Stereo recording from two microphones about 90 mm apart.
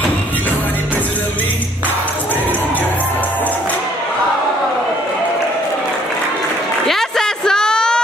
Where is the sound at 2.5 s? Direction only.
20° left (ahead or behind).